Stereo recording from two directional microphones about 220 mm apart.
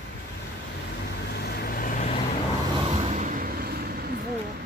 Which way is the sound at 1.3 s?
45° left (ahead or behind).